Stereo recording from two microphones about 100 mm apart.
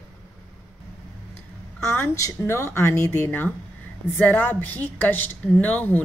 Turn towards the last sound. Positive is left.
turn(degrees=20)  # may be behind; listen again after turning